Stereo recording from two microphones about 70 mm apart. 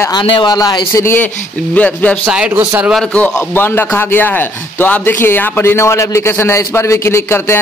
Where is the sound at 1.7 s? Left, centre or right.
Left.